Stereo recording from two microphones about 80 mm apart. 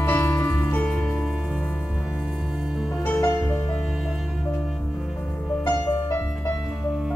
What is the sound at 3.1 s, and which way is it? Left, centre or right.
Music, left.